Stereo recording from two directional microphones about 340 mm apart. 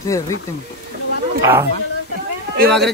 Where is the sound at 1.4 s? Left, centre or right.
Centre.